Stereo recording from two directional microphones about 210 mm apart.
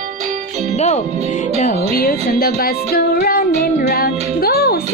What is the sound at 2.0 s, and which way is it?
Music, 45° left (ahead or behind).